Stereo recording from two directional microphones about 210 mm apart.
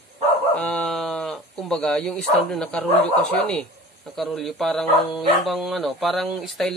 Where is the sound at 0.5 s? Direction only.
5° left (ahead or behind).